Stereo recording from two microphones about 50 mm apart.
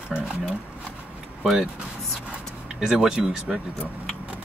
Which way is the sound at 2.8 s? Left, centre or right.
Centre.